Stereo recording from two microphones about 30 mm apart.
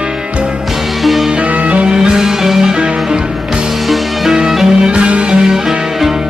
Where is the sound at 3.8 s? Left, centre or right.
Centre.